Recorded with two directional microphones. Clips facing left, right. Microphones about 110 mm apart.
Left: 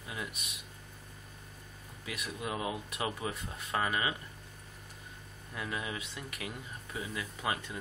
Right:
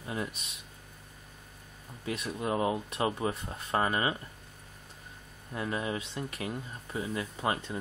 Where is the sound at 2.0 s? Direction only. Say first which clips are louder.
Right 6 dB; 30° right (ahead or behind).